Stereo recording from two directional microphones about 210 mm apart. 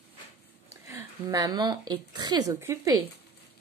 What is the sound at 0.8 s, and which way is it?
Speech, 15° right (ahead or behind).